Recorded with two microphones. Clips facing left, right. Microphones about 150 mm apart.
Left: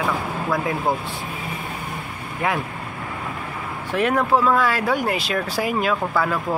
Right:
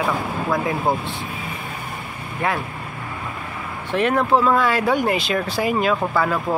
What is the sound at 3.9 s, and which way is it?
Speech, 10° left (ahead or behind).